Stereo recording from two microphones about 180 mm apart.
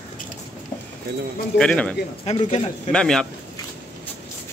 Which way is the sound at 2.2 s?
35° left (ahead or behind).